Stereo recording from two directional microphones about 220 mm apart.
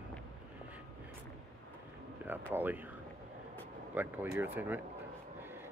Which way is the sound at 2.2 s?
5° right (ahead or behind).